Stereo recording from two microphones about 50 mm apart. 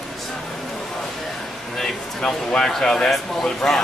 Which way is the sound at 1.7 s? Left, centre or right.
Centre.